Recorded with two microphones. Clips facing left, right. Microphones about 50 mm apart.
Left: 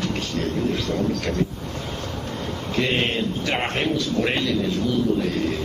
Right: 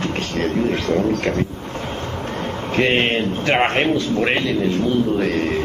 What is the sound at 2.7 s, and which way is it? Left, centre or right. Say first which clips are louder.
A man's voice: right 5 dB; right.